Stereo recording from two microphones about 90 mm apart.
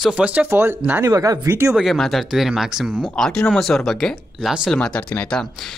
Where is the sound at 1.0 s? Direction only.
40° right (ahead or behind).